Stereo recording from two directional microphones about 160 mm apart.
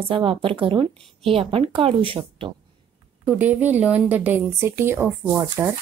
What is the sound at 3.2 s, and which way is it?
A woman's voice, 10° right (ahead or behind).